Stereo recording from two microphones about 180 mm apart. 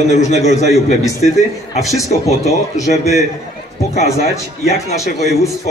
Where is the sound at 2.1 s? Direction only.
40° left (ahead or behind).